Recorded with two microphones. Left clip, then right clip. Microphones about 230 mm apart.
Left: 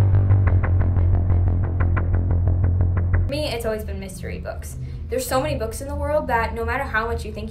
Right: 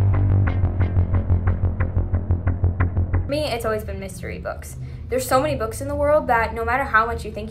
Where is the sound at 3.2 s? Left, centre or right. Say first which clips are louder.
Right 2 dB; centre.